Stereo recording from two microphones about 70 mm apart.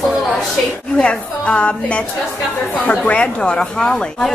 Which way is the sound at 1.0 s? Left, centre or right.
Centre.